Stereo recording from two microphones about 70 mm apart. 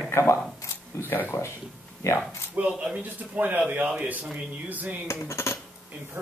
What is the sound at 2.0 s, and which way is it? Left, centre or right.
Speech, left.